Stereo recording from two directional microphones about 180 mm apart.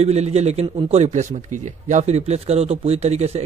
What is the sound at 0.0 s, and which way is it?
A man's voice, 35° right (ahead or behind).